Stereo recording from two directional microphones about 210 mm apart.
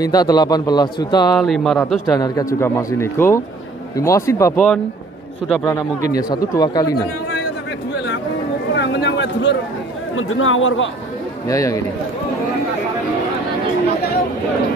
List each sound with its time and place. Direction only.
0.0 s a man's voice: 20° left (ahead or behind)
1.3 s speech: centre (ahead or behind)
2.1 s a man's voice: 15° left (ahead or behind)
8.7 s a sound: 60° left (ahead or behind)
10.1 s speech: 70° left (ahead or behind)
11.4 s a man's voice: 15° left (ahead or behind)